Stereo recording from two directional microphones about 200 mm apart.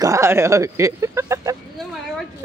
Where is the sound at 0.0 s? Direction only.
15° right (ahead or behind).